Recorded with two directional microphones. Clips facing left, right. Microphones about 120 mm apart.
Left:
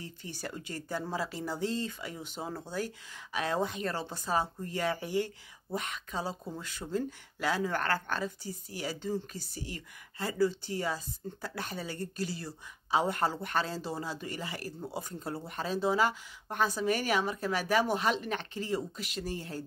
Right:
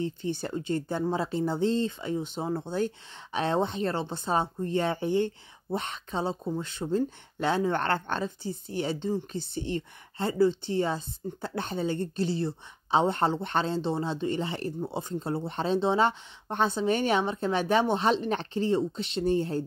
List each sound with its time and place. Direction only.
0.0 s speech: 25° right (ahead or behind)